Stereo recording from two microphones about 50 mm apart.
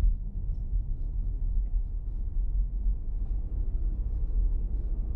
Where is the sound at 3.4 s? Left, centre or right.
Centre.